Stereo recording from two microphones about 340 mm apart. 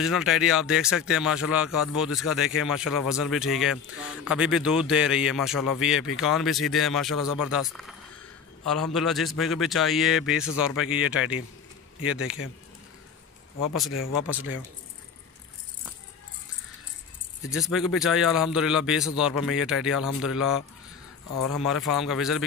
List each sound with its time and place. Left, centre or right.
0.0 s speech: centre
8.6 s speech: centre
13.8 s speech: left
17.4 s speech: centre